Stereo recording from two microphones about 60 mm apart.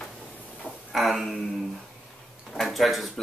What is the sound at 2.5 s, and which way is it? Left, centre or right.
Speech, centre.